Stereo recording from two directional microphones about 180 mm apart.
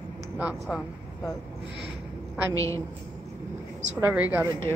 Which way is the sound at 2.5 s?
15° left (ahead or behind).